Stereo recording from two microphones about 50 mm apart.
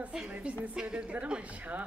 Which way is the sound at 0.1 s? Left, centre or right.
Centre.